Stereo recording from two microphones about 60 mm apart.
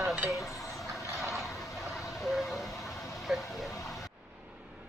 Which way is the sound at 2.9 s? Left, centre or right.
Left.